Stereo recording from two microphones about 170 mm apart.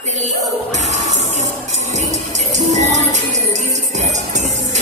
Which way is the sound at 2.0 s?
45° right (ahead or behind).